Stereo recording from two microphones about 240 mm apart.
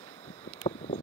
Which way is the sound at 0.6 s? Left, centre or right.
Left.